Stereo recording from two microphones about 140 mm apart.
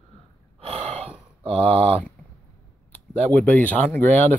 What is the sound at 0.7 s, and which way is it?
Gasp, 50° right (ahead or behind).